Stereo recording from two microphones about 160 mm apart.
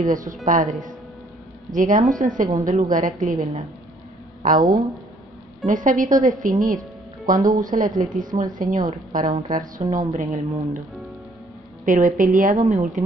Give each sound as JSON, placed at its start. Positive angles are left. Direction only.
{"t": 0.0, "sound": "a woman's voice", "side_deg": -55}
{"t": 1.7, "sound": "a woman's voice", "side_deg": -55}
{"t": 4.5, "sound": "a woman's voice", "side_deg": -60}
{"t": 11.8, "sound": "a woman's voice", "side_deg": -55}